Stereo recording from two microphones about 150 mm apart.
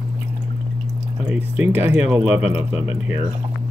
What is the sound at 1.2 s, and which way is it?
Speech, 10° right (ahead or behind).